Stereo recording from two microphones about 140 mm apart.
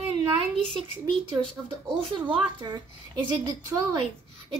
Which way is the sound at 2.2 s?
30° right (ahead or behind).